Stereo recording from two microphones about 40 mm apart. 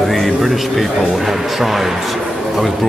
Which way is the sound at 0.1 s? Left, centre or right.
Centre.